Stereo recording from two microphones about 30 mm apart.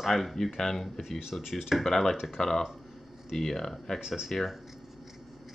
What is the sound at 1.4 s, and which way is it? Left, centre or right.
Speech, centre.